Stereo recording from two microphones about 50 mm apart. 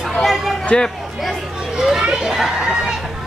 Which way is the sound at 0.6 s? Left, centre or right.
Centre.